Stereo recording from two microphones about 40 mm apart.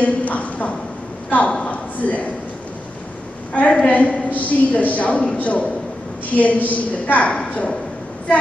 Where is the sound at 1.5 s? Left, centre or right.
Left.